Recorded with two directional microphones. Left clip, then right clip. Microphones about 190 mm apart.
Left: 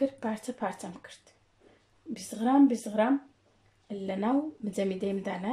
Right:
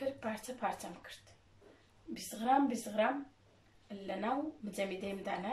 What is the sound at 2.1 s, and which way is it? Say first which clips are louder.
Speech: left 6 dB; 40° left (ahead or behind).